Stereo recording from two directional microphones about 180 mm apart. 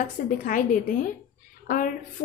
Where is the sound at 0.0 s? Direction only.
50° left (ahead or behind).